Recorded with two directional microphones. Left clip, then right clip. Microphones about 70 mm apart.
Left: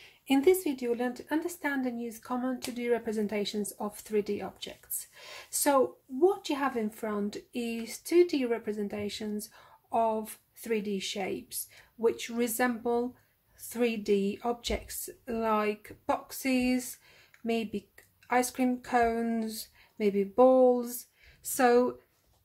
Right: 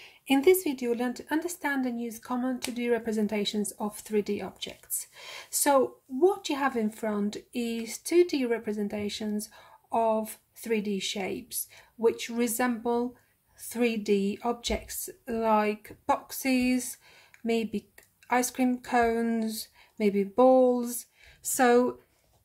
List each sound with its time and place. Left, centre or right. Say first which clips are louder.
0.0 s speech: right 2 dB; centre
16.1 s speech: right 3 dB; centre